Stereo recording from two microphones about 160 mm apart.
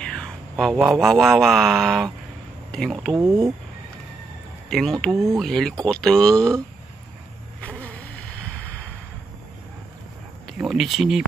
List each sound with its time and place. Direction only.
0.0 s a sound: 5° left (ahead or behind)
0.9 s speech: centre (ahead or behind)
3.2 s speech: 20° right (ahead or behind)
4.6 s speech: centre (ahead or behind)
7.6 s vehicle: 10° left (ahead or behind)
10.4 s speech: centre (ahead or behind)